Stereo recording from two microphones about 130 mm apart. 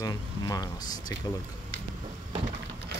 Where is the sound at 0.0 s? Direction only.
30° left (ahead or behind).